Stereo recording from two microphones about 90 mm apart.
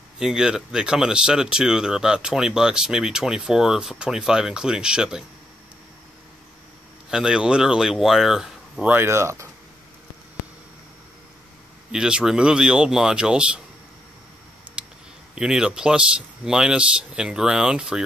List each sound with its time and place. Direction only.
0.2 s speech: 5° right (ahead or behind)
7.1 s speech: 10° right (ahead or behind)
8.8 s speech: 25° right (ahead or behind)
11.9 s speech: 10° right (ahead or behind)
14.8 s a sound: 10° right (ahead or behind)
15.3 s speech: 10° right (ahead or behind)